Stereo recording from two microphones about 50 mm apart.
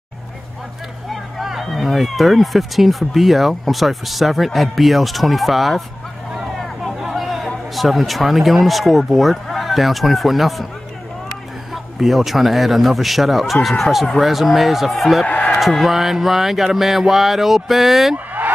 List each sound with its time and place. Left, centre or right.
1.1 s speech: centre
6.6 s hubbub: centre
7.0 s speech: centre
11.7 s speech: centre
15.2 s chicken: left
15.6 s speech: centre
18.1 s a sound: right